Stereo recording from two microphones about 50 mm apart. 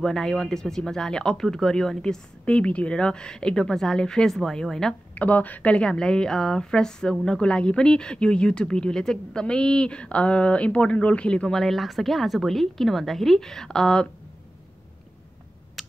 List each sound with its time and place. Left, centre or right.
0.0 s speech: centre
2.4 s speech: left
5.1 s a woman's voice: left
11.5 s speech: centre
15.8 s finger snapping: centre